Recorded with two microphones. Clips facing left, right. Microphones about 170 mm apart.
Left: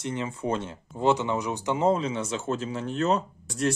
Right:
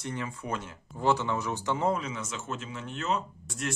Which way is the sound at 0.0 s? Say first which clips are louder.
Left 6 dB; 20° left (ahead or behind).